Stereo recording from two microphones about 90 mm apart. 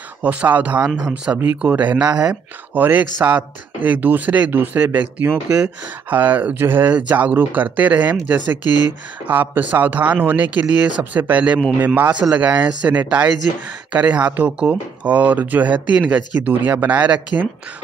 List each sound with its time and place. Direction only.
0.2 s speech: 20° right (ahead or behind)